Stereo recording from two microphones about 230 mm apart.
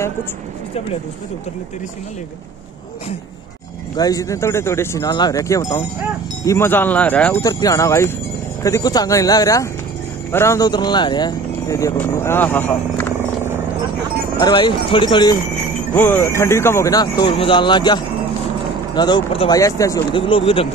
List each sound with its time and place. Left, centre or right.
3.9 s speech: centre
14.4 s speech: centre
15.9 s speech: centre